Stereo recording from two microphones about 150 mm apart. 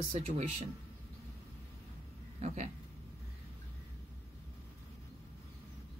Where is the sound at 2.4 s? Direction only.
50° right (ahead or behind).